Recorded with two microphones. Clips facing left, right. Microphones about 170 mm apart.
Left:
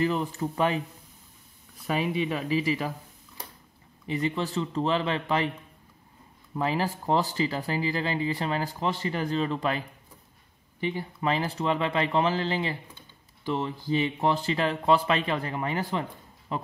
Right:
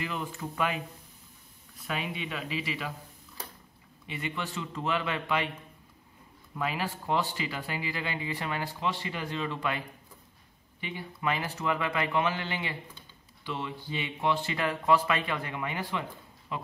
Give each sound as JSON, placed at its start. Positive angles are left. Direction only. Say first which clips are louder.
{"t": 0.0, "sound": "speech", "louder": "left 9 dB", "side_deg": 35}
{"t": 1.9, "sound": "speech", "louder": "left 8 dB", "side_deg": 45}
{"t": 4.1, "sound": "speech", "louder": "left 8 dB", "side_deg": 35}
{"t": 6.5, "sound": "speech", "louder": "left 5 dB", "side_deg": 35}
{"t": 11.0, "sound": "speech", "louder": "left 2 dB", "side_deg": 35}